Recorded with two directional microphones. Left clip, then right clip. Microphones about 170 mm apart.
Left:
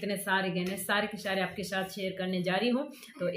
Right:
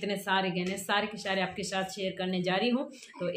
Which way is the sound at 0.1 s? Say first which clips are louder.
Right 1 dB; 5° right (ahead or behind).